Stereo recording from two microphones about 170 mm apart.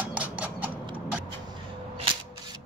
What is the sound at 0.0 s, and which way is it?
Clip-clop, 10° right (ahead or behind).